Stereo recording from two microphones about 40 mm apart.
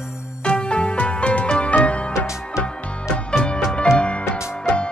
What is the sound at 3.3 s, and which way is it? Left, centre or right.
Music, left.